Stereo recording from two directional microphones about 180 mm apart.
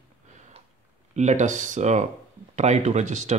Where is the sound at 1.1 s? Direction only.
40° right (ahead or behind).